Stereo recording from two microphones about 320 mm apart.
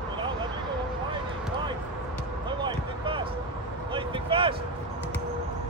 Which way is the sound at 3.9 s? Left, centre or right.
Centre.